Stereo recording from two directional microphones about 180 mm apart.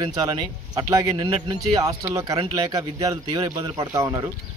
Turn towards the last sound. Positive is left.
turn(degrees=-20)  # may be behind; listen again after turning